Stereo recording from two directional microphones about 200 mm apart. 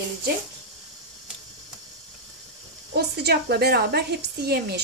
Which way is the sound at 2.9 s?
55° right (ahead or behind).